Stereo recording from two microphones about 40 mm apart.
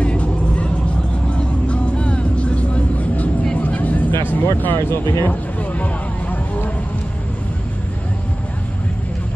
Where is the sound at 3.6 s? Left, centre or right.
Left.